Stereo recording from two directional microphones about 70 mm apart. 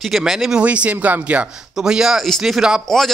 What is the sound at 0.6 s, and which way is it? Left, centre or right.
Speech, centre.